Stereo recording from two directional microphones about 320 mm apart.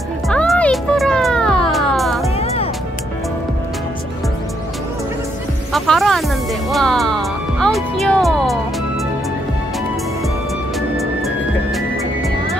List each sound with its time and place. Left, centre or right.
0.3 s music: centre
2.3 s music: centre
5.7 s music: centre
11.0 s music: centre